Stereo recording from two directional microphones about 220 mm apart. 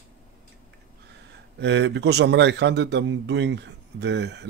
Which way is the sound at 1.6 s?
50° right (ahead or behind).